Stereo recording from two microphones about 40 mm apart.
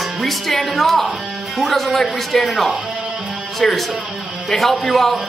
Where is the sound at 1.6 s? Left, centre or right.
Centre.